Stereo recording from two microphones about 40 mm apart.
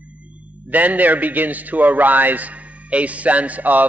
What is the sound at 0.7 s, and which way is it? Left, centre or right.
A man's voice, right.